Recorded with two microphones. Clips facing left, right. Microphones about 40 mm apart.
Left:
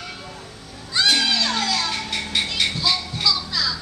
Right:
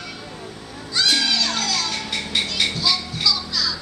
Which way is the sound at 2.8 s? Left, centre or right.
Centre.